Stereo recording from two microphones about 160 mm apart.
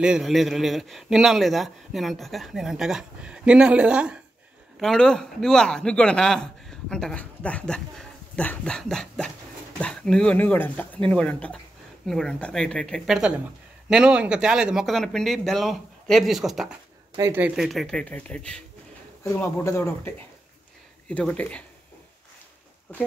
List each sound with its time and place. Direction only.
0.0 s speech: 5° right (ahead or behind)
17.2 s speech: 15° right (ahead or behind)
17.6 s speech: centre (ahead or behind)
19.2 s speech: 20° left (ahead or behind)